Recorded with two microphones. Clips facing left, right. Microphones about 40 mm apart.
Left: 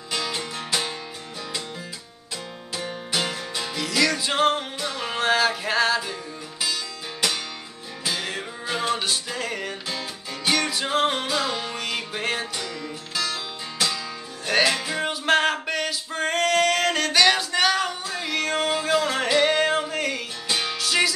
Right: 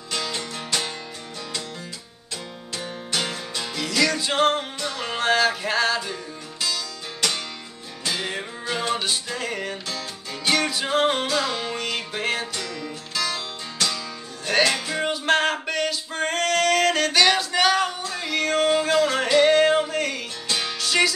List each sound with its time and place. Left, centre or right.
0.1 s music: centre
2.7 s music: centre
9.8 s music: centre
10.5 s music: centre